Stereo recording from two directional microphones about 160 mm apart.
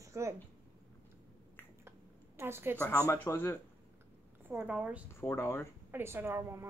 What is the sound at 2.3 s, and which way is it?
Speech, 15° right (ahead or behind).